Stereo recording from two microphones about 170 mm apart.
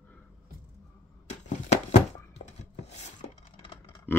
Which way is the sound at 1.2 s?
40° left (ahead or behind).